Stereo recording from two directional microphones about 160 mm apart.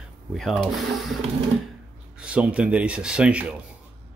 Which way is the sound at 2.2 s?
5° right (ahead or behind).